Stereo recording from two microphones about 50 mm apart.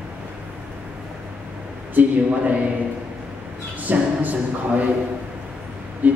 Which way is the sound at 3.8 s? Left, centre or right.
Right.